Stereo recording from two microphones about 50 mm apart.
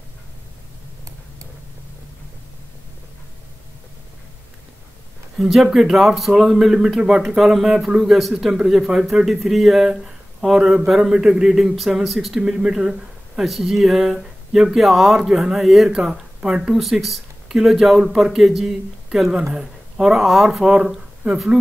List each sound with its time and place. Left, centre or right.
5.4 s speech: centre
7.7 s speech: centre
8.0 s speech: centre
12.4 s speech: centre
15.1 s speech: centre
16.3 s speech: centre
16.7 s speech: centre